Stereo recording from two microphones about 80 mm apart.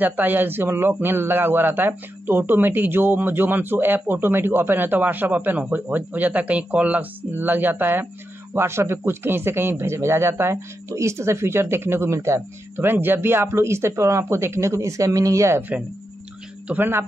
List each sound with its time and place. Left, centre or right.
0.0 s a man's voice: right
8.5 s speech: right
16.6 s a man's voice: right